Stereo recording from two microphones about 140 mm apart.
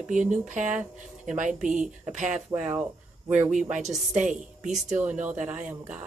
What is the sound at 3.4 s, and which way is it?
Speech, 60° right (ahead or behind).